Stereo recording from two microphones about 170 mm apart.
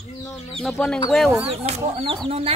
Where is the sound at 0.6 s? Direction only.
5° left (ahead or behind).